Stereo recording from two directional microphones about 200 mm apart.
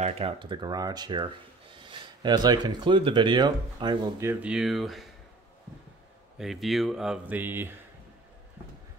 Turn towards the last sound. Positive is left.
turn(degrees=-10)  # may be behind; listen again after turning